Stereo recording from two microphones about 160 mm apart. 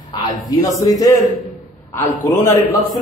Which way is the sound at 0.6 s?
20° left (ahead or behind).